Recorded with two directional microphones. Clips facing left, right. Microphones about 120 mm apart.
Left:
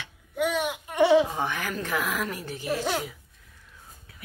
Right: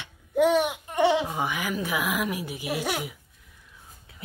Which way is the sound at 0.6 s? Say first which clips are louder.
Right 3 dB; 25° right (ahead or behind).